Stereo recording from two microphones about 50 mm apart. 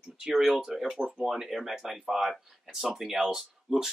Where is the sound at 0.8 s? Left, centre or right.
Centre.